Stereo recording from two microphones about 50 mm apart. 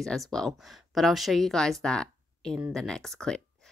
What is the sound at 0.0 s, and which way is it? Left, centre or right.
A woman's voice, centre.